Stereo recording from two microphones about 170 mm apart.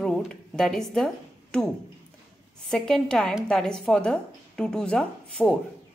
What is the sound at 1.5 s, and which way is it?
A woman's voice, 5° left (ahead or behind).